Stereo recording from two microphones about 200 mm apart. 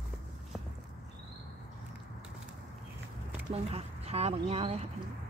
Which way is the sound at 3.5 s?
30° right (ahead or behind).